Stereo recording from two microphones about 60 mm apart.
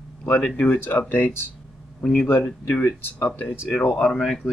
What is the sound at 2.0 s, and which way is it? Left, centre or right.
Speech, centre.